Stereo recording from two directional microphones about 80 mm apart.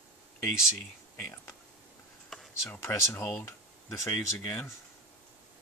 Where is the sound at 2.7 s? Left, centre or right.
Left.